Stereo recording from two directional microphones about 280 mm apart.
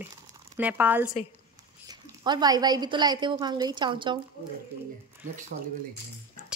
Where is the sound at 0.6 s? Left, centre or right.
Centre.